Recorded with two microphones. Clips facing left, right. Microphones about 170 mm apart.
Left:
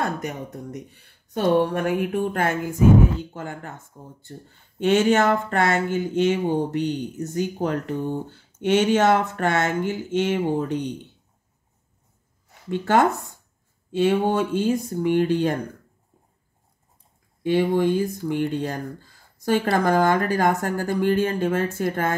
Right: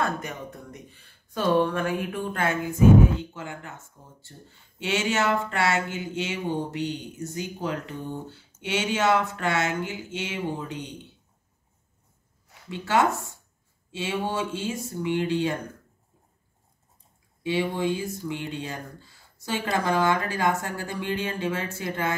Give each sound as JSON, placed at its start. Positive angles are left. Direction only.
{"t": 0.3, "sound": "speech", "side_deg": 40}
{"t": 1.7, "sound": "speech", "side_deg": 50}
{"t": 12.6, "sound": "speech", "side_deg": 55}
{"t": 13.9, "sound": "a sound", "side_deg": 55}
{"t": 14.9, "sound": "speech", "side_deg": 50}
{"t": 17.5, "sound": "speech", "side_deg": 50}